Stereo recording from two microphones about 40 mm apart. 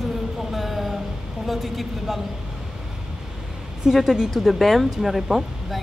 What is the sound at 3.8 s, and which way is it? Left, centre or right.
Speech, centre.